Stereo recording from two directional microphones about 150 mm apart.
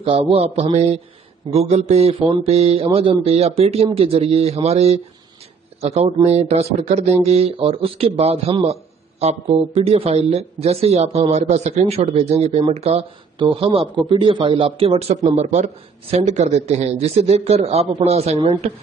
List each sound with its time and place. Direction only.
0.0 s speech: 40° right (ahead or behind)